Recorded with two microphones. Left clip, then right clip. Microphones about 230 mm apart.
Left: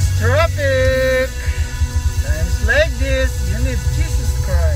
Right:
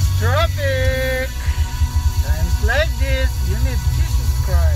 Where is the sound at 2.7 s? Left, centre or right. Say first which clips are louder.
Left 4 dB; left.